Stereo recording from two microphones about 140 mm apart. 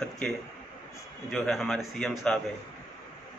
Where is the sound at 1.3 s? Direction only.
Centre (ahead or behind).